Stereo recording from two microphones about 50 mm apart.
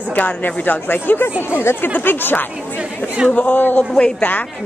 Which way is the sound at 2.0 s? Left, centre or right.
Left.